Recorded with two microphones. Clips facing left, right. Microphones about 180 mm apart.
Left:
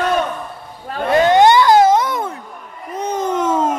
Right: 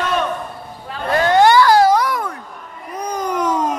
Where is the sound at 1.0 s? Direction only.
20° left (ahead or behind).